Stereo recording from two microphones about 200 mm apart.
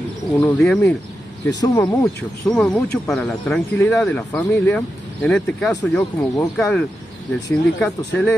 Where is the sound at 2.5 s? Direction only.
5° left (ahead or behind).